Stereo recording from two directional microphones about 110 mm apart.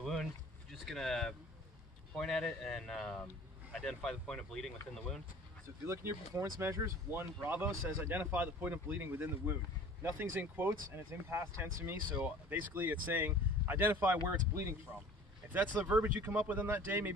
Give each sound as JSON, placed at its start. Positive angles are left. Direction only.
{"t": 0.0, "sound": "a sound", "side_deg": 5}
{"t": 2.1, "sound": "speech", "side_deg": 5}
{"t": 5.9, "sound": "speech", "side_deg": -25}